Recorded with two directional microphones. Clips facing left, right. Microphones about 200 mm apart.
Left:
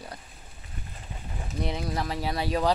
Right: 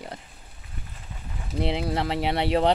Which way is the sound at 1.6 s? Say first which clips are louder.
Right 5 dB; 25° right (ahead or behind).